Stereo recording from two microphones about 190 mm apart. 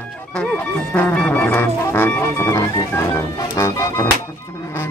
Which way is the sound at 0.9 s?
5° left (ahead or behind).